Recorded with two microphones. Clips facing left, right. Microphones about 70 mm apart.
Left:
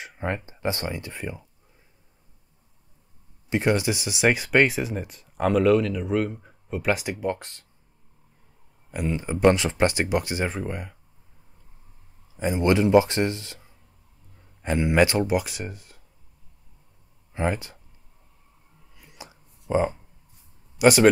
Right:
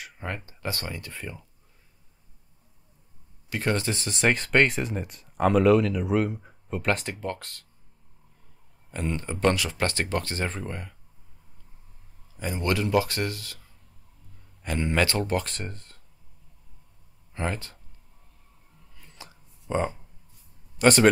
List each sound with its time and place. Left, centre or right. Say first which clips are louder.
0.0 s speech: left 6 dB; left
3.4 s speech: left 5 dB; centre
8.9 s speech: left 3 dB; centre
12.4 s speech: left 6 dB; left
17.3 s speech: left 5 dB; centre
18.9 s a sound: left 3 dB; centre
19.7 s speech: left 4 dB; centre